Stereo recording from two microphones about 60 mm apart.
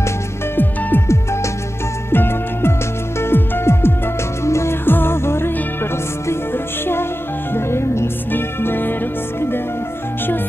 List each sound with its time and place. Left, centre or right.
0.6 s music: left
1.0 s music: left
4.5 s music: left
4.8 s music: left
7.5 s music: left
8.3 s music: left